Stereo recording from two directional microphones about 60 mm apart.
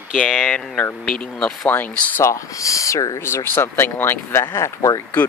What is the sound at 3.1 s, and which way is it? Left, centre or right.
Speech, left.